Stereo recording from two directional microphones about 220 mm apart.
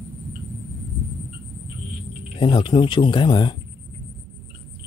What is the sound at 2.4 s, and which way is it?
Speech, 20° left (ahead or behind).